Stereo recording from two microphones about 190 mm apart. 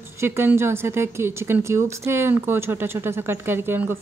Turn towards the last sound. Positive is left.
turn(degrees=-10)  # may be behind; listen again after turning